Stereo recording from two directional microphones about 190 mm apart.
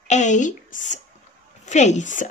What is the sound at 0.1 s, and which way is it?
A woman's voice, 40° left (ahead or behind).